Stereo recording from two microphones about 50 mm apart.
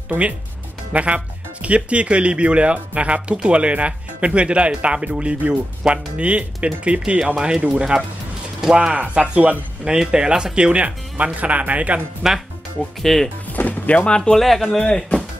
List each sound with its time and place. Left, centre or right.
0.9 s speech: right
8.5 s speech: centre
8.9 s speech: right
13.0 s speech: centre
13.6 s speech: left
14.1 s speech: centre
14.4 s speech: centre
14.8 s speech: centre